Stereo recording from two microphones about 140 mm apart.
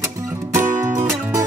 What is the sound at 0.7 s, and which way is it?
Music, 20° right (ahead or behind).